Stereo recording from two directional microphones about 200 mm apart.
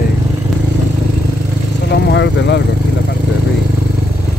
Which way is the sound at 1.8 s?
60° left (ahead or behind).